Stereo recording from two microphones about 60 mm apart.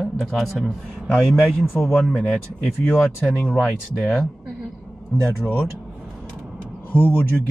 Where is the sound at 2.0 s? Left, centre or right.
Centre.